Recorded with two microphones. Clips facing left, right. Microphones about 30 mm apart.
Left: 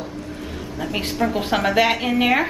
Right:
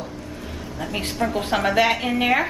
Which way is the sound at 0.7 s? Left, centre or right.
Centre.